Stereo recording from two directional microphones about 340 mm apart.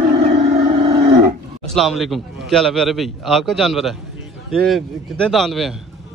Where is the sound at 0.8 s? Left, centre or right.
Centre.